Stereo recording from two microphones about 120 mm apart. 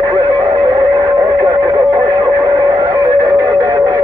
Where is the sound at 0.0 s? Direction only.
25° right (ahead or behind).